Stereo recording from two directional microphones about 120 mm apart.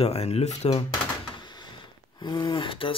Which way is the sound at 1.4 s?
40° left (ahead or behind).